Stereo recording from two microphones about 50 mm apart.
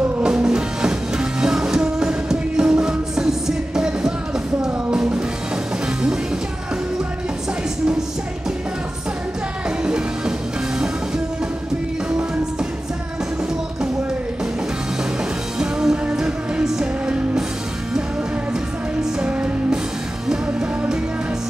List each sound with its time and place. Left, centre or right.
0.2 s music: centre
9.7 s music: centre
15.6 s music: centre
17.0 s music: right
19.1 s music: right